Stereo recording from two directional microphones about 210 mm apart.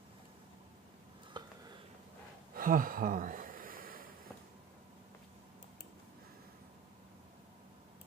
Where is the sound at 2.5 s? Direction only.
40° right (ahead or behind).